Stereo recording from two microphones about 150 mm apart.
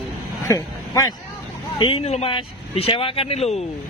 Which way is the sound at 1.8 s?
40° left (ahead or behind).